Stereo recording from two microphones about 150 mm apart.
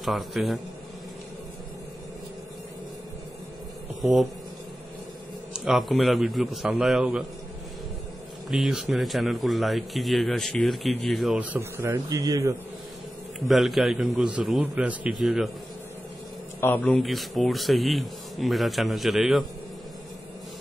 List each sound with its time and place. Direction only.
0.0 s speech: centre (ahead or behind)
4.0 s speech: centre (ahead or behind)
5.5 s speech: centre (ahead or behind)
8.5 s speech: 5° right (ahead or behind); by 12.5 s 25° right (ahead or behind)
13.4 s speech: centre (ahead or behind)
16.6 s speech: 10° left (ahead or behind)
17.0 s speech: centre (ahead or behind)